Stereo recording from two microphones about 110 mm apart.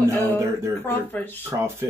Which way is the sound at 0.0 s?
25° right (ahead or behind).